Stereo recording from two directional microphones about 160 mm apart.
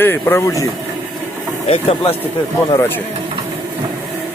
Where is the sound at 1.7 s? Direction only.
35° left (ahead or behind).